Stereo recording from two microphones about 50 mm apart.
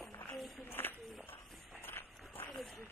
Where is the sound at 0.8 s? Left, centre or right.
Left.